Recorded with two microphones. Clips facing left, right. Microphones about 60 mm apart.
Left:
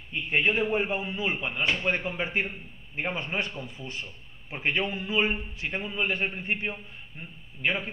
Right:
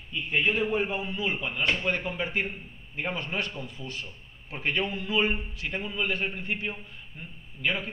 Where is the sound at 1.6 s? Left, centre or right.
Centre.